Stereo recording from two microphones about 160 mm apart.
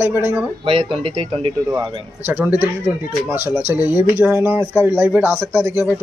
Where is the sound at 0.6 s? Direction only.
35° right (ahead or behind).